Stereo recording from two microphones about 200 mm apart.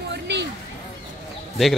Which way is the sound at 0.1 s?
60° right (ahead or behind).